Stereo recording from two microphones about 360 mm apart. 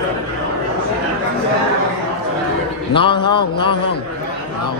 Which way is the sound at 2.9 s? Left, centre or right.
Centre.